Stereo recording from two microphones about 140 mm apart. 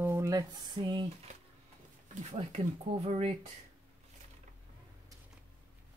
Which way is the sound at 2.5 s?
50° right (ahead or behind).